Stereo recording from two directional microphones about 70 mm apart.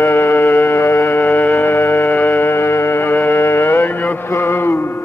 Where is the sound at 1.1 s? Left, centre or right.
Left.